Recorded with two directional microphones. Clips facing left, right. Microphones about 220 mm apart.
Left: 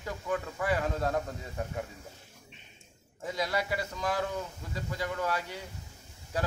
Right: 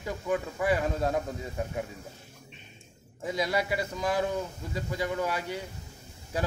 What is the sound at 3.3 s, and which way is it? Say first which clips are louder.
A man's voice: right 3 dB; 15° right (ahead or behind).